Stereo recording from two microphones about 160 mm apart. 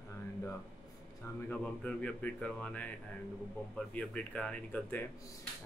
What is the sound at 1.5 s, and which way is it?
Speech, 5° left (ahead or behind).